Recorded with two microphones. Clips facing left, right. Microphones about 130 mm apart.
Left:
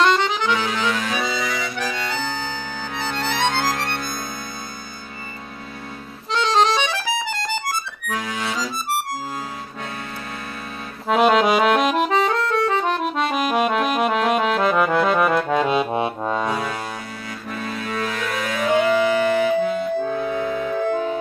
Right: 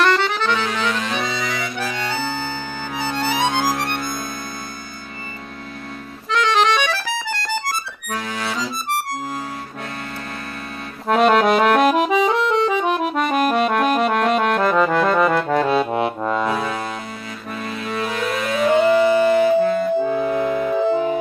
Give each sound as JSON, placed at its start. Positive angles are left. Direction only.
{"t": 0.0, "sound": "accordion", "side_deg": 15}
{"t": 3.0, "sound": "music", "side_deg": -10}
{"t": 6.3, "sound": "accordion", "side_deg": 30}
{"t": 11.1, "sound": "accordion", "side_deg": 5}
{"t": 12.3, "sound": "music", "side_deg": -20}
{"t": 12.8, "sound": "music", "side_deg": -5}
{"t": 13.9, "sound": "accordion", "side_deg": 0}
{"t": 17.5, "sound": "music", "side_deg": -5}
{"t": 19.9, "sound": "music", "side_deg": -15}